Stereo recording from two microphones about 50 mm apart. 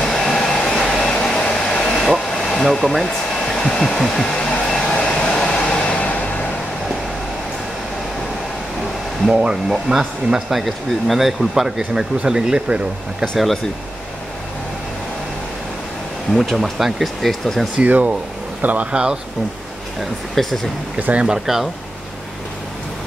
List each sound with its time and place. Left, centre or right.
0.0 s hair dryer: centre
2.0 s hair dryer: centre; by 6.4 s left
9.3 s speech: right
16.3 s speech: centre
17.7 s speech: right
18.9 s speech: centre
20.4 s speech: centre
21.0 s speech: right
21.3 s speech: centre